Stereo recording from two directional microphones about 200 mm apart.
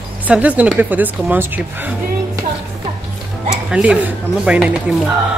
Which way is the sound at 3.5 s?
5° right (ahead or behind).